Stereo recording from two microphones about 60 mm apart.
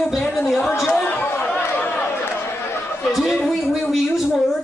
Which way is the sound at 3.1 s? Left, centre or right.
Centre.